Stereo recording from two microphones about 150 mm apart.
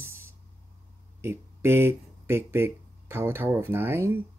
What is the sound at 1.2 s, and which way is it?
Speech, 15° right (ahead or behind).